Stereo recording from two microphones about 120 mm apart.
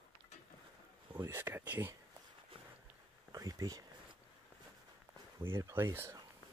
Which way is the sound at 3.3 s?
30° right (ahead or behind).